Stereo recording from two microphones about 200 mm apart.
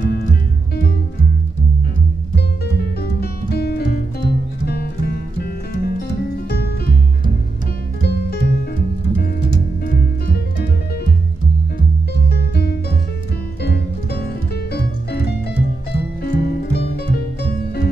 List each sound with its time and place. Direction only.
0.0 s music: 50° left (ahead or behind)
2.3 s music: 50° left (ahead or behind)
8.0 s music: 55° left (ahead or behind)
9.8 s music: 50° left (ahead or behind)
12.3 s music: 55° left (ahead or behind)